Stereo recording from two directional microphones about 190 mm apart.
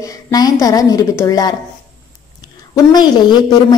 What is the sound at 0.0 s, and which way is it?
A woman's voice, 20° left (ahead or behind).